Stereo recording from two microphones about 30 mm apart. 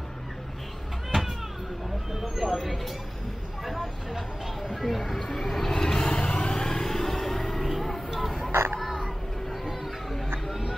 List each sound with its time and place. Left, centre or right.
2.1 s speech: centre
3.6 s vehicle: centre
4.6 s speech: centre
5.3 s vehicle: centre
5.7 s vehicle: left; by 8.0 s centre
8.1 s burping: centre
8.7 s children playing: centre
10.1 s music: centre